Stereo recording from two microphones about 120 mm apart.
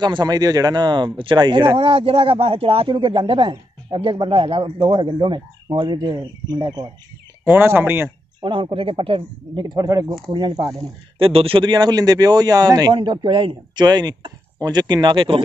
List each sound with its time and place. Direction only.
0.0 s speech: 35° right (ahead or behind)
1.8 s speech: 50° right (ahead or behind); by 6.9 s 35° right (ahead or behind)
7.4 s speech: 20° right (ahead or behind)
8.4 s speech: 45° right (ahead or behind)
11.1 s speech: 50° right (ahead or behind)